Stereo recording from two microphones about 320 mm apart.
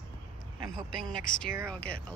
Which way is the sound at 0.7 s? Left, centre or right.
Centre.